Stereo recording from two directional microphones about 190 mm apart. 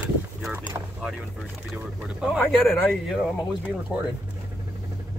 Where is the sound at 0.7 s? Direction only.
15° right (ahead or behind).